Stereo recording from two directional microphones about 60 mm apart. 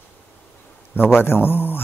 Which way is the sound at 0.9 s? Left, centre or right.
Left.